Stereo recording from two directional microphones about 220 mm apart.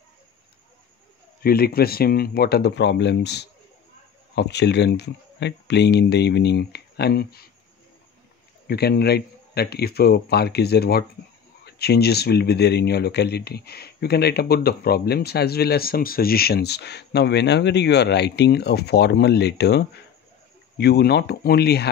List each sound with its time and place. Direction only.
1.4 s speech: 45° left (ahead or behind)
8.6 s speech: 45° left (ahead or behind)